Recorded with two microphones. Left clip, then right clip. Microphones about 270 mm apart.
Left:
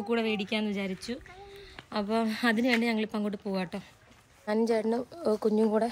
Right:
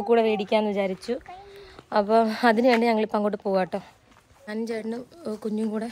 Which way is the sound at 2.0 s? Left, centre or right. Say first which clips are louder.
Right 8 dB; centre.